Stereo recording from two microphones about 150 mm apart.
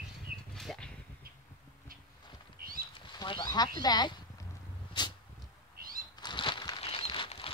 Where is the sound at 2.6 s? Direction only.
75° right (ahead or behind).